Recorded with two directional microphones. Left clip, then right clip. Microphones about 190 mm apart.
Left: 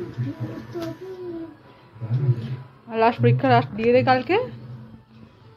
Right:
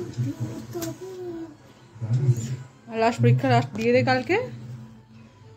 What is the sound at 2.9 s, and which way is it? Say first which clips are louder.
A woman's voice: left 3 dB; 5° right (ahead or behind).